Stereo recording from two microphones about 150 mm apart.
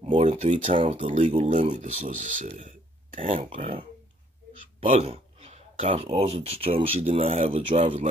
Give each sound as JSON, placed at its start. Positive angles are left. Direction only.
{"t": 0.1, "sound": "speech", "side_deg": -45}
{"t": 3.4, "sound": "speech", "side_deg": -40}
{"t": 4.7, "sound": "speech", "side_deg": -40}